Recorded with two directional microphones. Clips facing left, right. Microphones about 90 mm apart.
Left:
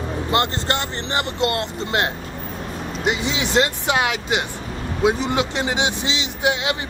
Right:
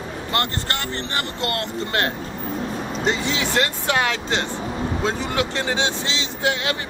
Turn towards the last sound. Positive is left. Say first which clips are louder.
# left 2 dB
turn(degrees=20)  # may be behind; listen again after turning